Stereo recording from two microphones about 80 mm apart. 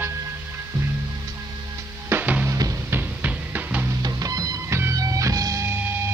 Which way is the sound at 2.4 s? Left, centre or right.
Right.